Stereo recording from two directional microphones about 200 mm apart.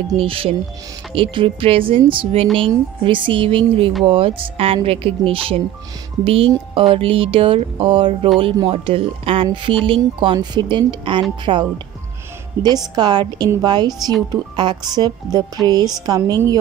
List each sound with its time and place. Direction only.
0.2 s speech: 25° right (ahead or behind)
12.9 s speech: 20° right (ahead or behind)